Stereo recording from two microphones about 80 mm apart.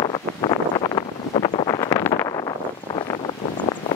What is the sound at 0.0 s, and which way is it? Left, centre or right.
Wind noise, left.